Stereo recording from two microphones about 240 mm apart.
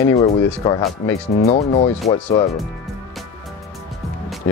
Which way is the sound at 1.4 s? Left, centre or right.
Left.